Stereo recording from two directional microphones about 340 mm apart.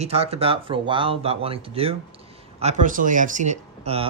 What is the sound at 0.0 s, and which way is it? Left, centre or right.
Speech, centre.